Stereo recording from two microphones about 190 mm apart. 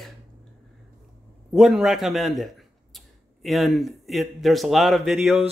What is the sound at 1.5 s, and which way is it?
A man's voice, centre (ahead or behind).